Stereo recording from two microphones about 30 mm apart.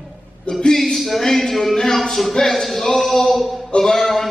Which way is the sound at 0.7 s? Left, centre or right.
Centre.